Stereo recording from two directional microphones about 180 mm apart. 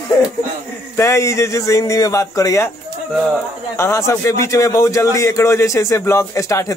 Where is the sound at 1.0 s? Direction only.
15° left (ahead or behind).